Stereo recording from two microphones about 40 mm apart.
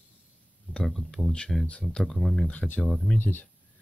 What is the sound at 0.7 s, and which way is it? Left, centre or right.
Speech, left.